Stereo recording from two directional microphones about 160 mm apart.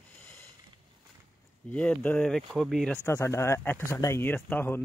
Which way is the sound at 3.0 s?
15° left (ahead or behind).